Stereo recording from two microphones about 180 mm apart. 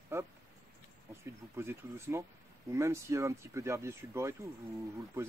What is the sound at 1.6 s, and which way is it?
Speech, 15° right (ahead or behind).